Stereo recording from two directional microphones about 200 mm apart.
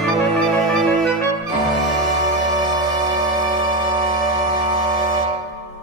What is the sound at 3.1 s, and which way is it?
Music, 35° right (ahead or behind).